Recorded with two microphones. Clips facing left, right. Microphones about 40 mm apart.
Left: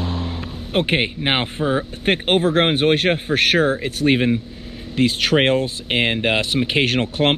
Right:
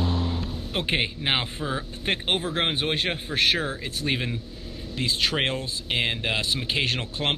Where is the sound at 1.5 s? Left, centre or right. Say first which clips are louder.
Left 9 dB; left.